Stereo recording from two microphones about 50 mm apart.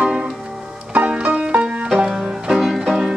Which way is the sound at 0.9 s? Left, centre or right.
Right.